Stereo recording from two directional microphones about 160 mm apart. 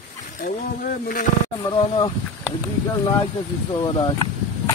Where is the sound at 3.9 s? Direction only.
25° left (ahead or behind).